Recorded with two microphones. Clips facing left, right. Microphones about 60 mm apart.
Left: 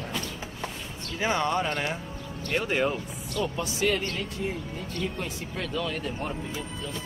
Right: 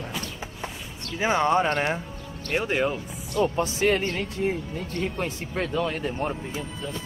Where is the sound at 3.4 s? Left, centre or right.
Right.